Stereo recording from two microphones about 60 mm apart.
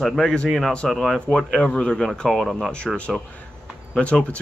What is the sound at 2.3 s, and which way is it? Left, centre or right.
Speech, centre.